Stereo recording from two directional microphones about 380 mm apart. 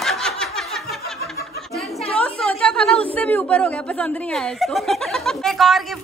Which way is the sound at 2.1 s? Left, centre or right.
Centre.